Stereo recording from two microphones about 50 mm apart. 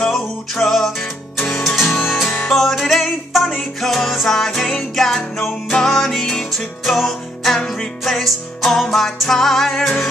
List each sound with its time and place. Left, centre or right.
0.1 s music: centre